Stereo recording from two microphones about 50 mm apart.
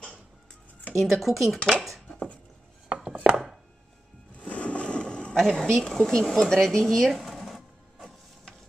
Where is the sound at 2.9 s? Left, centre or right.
Right.